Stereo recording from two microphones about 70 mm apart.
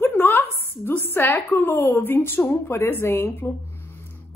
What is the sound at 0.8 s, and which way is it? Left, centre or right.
Speech, left.